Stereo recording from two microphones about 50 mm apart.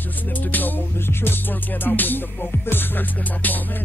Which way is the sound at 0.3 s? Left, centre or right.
Left.